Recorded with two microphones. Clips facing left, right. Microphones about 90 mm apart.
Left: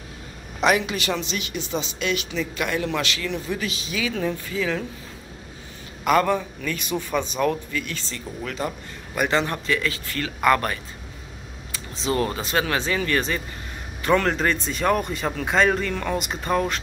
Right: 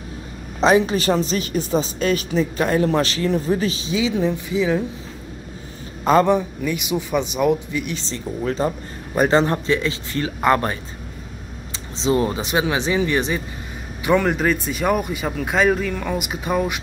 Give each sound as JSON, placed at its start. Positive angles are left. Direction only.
{"t": 0.6, "sound": "speech", "side_deg": -30}
{"t": 6.0, "sound": "a man's voice", "side_deg": -20}